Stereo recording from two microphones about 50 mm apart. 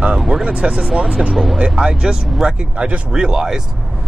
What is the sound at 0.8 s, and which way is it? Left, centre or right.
Speech, centre.